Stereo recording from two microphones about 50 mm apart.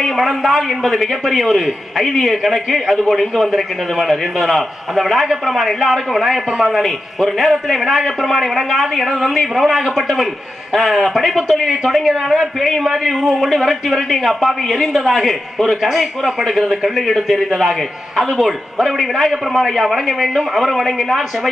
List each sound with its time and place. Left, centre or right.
0.0 s a man's voice: centre